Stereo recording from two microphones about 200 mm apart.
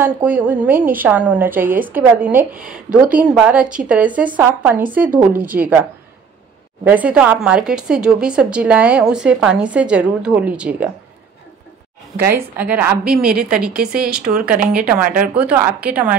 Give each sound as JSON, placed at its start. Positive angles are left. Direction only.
{"t": 0.0, "sound": "a woman's voice", "side_deg": -10}
{"t": 12.5, "sound": "a woman's voice", "side_deg": -10}
{"t": 15.0, "sound": "a woman's voice", "side_deg": -45}
{"t": 15.3, "sound": "a woman's voice", "side_deg": -5}